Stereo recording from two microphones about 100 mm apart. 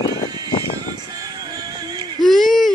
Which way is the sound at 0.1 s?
40° right (ahead or behind).